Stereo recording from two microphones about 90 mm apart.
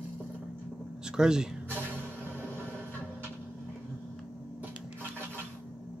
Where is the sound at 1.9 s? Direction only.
25° right (ahead or behind).